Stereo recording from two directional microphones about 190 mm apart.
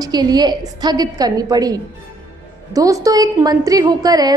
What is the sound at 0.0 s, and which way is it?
A woman's voice, 20° right (ahead or behind).